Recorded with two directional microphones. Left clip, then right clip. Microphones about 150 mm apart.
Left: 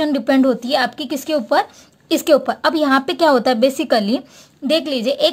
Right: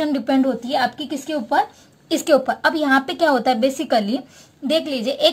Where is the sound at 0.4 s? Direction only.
55° left (ahead or behind).